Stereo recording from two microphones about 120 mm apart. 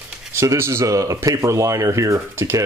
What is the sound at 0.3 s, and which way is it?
Speech, 20° right (ahead or behind).